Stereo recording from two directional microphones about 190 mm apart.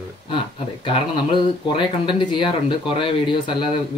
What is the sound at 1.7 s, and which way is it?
Speech, 25° left (ahead or behind).